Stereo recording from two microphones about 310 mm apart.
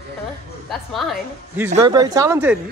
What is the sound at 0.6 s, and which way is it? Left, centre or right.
Speech, centre.